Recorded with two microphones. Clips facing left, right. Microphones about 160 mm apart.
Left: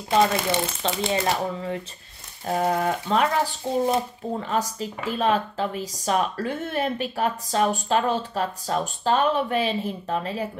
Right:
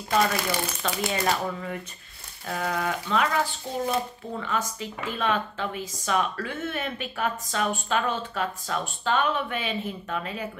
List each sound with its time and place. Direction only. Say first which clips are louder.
0.1 s speech: left 4 dB; 25° left (ahead or behind)